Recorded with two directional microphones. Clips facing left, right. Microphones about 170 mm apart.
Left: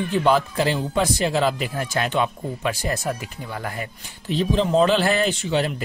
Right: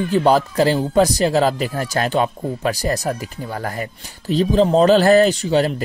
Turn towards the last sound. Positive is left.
turn(degrees=-40)  # may be behind; listen again after turning